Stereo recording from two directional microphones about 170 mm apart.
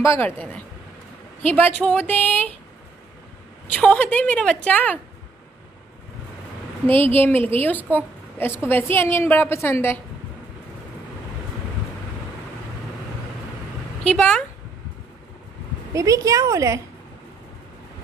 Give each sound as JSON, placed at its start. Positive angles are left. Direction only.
{"t": 0.0, "sound": "a woman's voice", "side_deg": 15}
{"t": 3.7, "sound": "a woman's voice", "side_deg": 5}
{"t": 6.9, "sound": "a woman's voice", "side_deg": 10}
{"t": 14.0, "sound": "speech", "side_deg": 5}
{"t": 15.9, "sound": "a woman's voice", "side_deg": -20}